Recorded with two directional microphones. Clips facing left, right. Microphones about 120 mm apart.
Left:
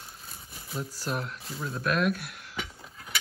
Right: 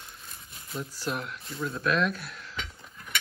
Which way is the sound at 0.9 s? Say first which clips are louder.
Right 1 dB; 40° left (ahead or behind).